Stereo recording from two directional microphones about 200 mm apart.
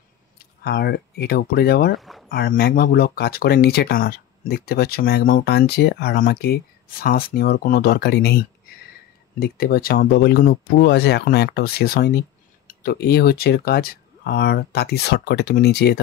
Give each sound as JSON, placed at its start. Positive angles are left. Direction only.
{"t": 0.7, "sound": "speech", "side_deg": 55}
{"t": 2.0, "sound": "boat", "side_deg": 0}
{"t": 2.2, "sound": "speech", "side_deg": 50}